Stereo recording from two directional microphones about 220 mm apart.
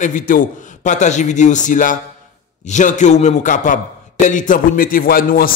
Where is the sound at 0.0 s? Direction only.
35° left (ahead or behind).